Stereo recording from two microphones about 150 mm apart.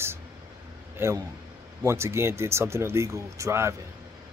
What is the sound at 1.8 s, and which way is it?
Speech, 20° right (ahead or behind).